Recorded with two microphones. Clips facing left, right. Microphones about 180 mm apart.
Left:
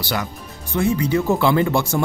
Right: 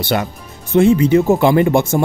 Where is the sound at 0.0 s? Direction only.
25° right (ahead or behind).